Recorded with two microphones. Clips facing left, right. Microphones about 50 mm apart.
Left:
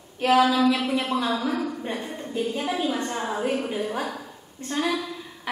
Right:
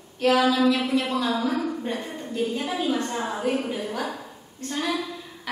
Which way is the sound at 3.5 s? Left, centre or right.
Centre.